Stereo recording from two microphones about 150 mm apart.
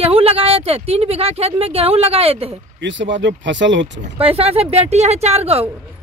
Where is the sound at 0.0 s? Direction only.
40° right (ahead or behind).